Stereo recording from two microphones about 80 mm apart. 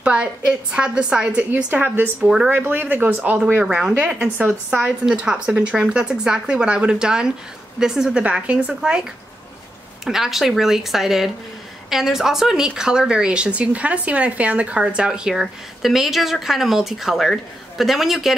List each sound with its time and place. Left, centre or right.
0.0 s speech: centre
2.2 s speech: centre
2.5 s speech: right
3.6 s speech: centre
10.0 s speech: centre